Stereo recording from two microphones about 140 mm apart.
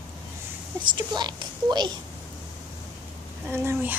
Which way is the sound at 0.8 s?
30° right (ahead or behind).